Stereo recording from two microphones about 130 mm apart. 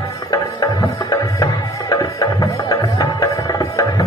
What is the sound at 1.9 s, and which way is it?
Music, 30° left (ahead or behind).